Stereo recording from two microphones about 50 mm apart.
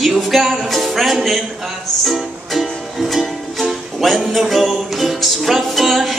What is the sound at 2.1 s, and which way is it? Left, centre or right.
Music, centre.